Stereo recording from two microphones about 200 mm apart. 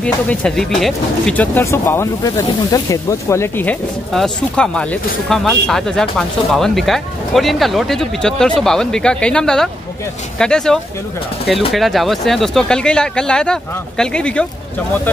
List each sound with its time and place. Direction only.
0.0 s speech: 5° left (ahead or behind)